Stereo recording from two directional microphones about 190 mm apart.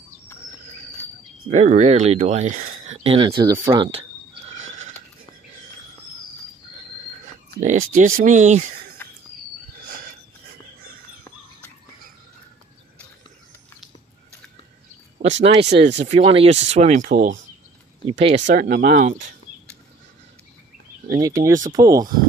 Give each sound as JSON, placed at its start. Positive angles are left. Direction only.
{"t": 1.5, "sound": "speech", "side_deg": -40}
{"t": 7.6, "sound": "speech", "side_deg": -40}
{"t": 9.0, "sound": "a sound", "side_deg": 10}
{"t": 15.6, "sound": "speech", "side_deg": -65}
{"t": 16.1, "sound": "speech", "side_deg": -35}
{"t": 18.0, "sound": "speech", "side_deg": -35}
{"t": 18.5, "sound": "speech", "side_deg": -50}
{"t": 21.2, "sound": "speech", "side_deg": -20}